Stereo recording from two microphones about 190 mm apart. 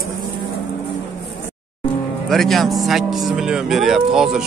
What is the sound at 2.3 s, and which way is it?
Speech, centre (ahead or behind).